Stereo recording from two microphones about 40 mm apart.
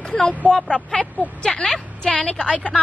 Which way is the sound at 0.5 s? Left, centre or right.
Left.